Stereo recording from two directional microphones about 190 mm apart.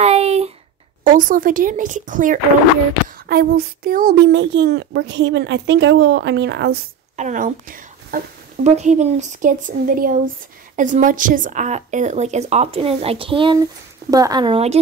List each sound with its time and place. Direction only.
0.0 s a sound: 35° right (ahead or behind)
1.0 s speech: 45° right (ahead or behind)
3.3 s speech: 55° right (ahead or behind)
4.4 s a child's voice: 65° right (ahead or behind)
7.2 s speech: 40° right (ahead or behind)